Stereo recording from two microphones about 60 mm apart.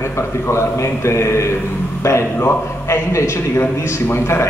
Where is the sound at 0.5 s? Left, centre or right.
Left.